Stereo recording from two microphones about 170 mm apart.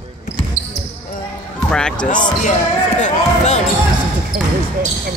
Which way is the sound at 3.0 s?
45° left (ahead or behind).